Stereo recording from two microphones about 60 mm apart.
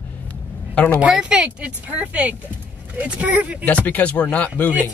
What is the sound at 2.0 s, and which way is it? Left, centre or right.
Speech, right.